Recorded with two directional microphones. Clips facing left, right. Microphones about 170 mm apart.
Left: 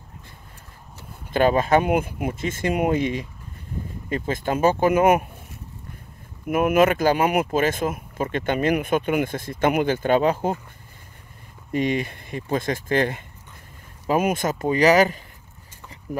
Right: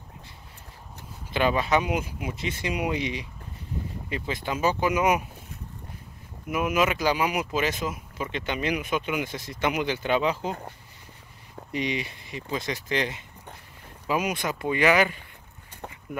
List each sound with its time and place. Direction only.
1.3 s speech: 45° left (ahead or behind)
6.4 s speech: 55° left (ahead or behind)
11.7 s speech: 50° left (ahead or behind)